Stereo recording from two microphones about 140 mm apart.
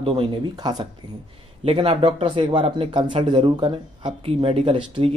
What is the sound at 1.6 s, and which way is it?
Speech, 45° right (ahead or behind).